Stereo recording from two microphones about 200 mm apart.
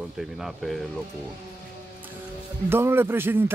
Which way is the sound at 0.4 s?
Centre (ahead or behind).